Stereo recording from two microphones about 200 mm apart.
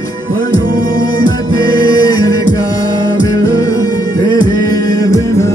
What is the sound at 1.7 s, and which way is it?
Music, 20° left (ahead or behind).